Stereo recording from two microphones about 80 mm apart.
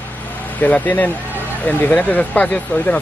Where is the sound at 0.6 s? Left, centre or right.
Left.